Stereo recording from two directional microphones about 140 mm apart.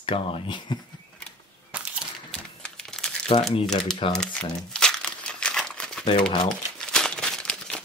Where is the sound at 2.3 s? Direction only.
5° left (ahead or behind).